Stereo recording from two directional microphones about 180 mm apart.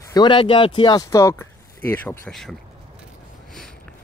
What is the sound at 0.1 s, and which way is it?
Speech, 25° left (ahead or behind).